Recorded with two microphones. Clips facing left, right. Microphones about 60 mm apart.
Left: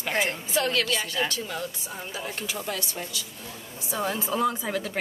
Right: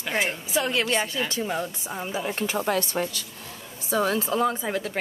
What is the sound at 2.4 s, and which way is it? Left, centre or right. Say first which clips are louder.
Speech: right 7 dB; right.